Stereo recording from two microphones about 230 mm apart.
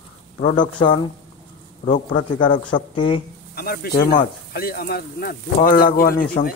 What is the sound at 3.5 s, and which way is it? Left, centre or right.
Speech, left.